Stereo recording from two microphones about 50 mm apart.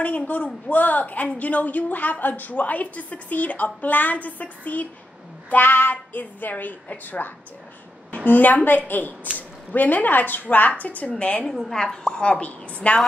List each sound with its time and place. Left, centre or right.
0.0 s a woman's voice: left
5.5 s a woman's voice: left
11.7 s a woman's voice: centre